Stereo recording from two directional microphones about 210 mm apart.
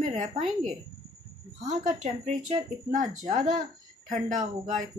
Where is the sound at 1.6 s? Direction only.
35° right (ahead or behind).